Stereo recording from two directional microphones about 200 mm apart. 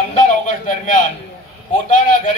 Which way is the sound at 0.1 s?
40° left (ahead or behind).